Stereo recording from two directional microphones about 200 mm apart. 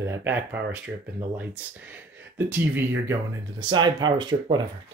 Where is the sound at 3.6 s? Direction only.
20° right (ahead or behind).